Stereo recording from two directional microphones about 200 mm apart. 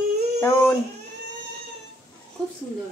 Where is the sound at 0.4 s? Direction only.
10° left (ahead or behind).